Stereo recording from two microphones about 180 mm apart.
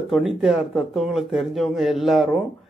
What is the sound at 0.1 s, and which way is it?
Speech, centre (ahead or behind).